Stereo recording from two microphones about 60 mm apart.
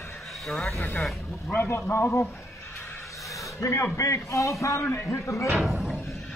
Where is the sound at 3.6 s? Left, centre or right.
Left.